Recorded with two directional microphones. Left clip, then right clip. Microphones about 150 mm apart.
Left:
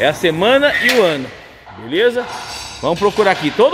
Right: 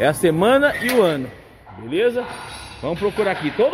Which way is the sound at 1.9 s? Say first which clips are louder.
Left 5 dB; centre (ahead or behind).